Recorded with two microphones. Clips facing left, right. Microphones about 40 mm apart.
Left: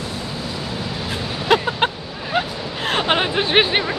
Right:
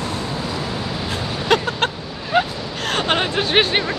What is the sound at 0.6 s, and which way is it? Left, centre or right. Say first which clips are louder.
Vehicle: right 2 dB; centre.